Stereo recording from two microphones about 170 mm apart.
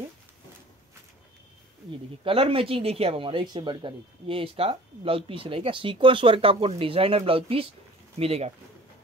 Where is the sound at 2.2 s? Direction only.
30° right (ahead or behind).